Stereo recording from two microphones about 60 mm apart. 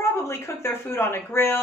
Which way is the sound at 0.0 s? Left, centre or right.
Left.